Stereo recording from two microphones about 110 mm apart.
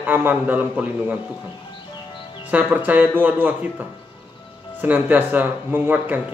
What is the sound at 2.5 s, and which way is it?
Speech, 15° right (ahead or behind).